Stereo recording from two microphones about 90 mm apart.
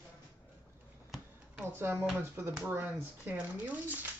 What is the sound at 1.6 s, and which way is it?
Speech, 25° right (ahead or behind).